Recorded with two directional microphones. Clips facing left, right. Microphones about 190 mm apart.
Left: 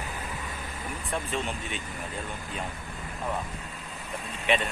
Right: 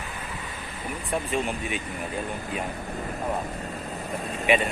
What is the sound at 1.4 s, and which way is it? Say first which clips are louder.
Speech: right 5 dB; 10° right (ahead or behind).